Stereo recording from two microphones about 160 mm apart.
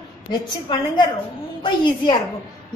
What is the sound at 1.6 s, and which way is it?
Speech, 30° left (ahead or behind).